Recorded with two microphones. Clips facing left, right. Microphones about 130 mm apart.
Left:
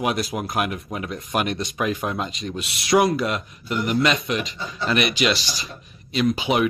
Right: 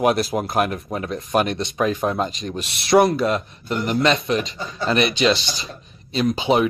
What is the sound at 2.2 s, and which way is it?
Speech, 40° right (ahead or behind).